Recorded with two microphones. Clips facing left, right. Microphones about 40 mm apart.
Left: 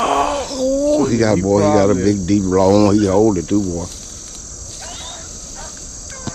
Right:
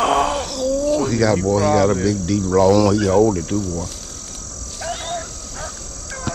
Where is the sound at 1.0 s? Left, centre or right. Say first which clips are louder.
Left 3 dB; centre.